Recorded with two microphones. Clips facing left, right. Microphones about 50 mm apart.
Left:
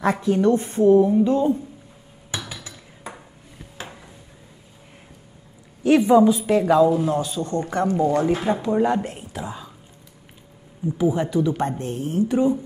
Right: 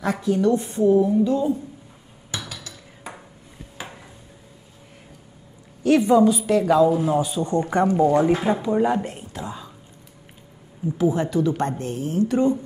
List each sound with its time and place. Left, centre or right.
0.0 s a woman's voice: left
5.9 s a woman's voice: centre
6.7 s speech: centre
8.5 s a woman's voice: centre
11.0 s a woman's voice: centre